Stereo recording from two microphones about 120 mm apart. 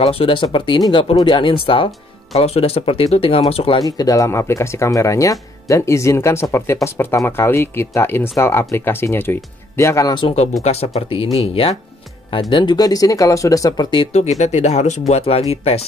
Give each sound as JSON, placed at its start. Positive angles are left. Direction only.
{"t": 0.0, "sound": "speech", "side_deg": 50}
{"t": 3.8, "sound": "speech", "side_deg": 30}
{"t": 10.6, "sound": "speech", "side_deg": 60}
{"t": 12.3, "sound": "speech", "side_deg": 45}
{"t": 14.1, "sound": "speech", "side_deg": 70}